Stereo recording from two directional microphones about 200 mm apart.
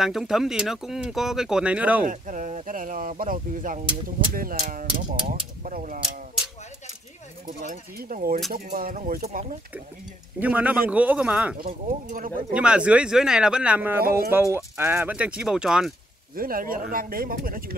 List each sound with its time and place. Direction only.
0.0 s speech: centre (ahead or behind)
2.0 s speech: 40° right (ahead or behind)
7.4 s speech: 40° right (ahead or behind)
10.4 s speech: 5° right (ahead or behind)
11.6 s speech: 45° right (ahead or behind)
12.5 s speech: 5° right (ahead or behind)
16.3 s speech: 45° right (ahead or behind)